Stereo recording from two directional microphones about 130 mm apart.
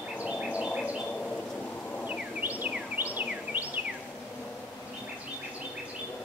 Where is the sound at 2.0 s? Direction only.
10° right (ahead or behind).